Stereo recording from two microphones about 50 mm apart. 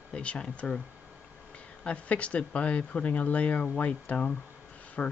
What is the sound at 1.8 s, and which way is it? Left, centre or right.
Speech, left.